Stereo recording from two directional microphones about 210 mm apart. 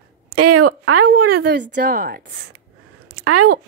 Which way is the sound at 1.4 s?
55° right (ahead or behind).